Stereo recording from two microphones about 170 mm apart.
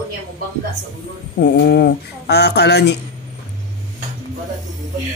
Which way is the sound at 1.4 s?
75° left (ahead or behind).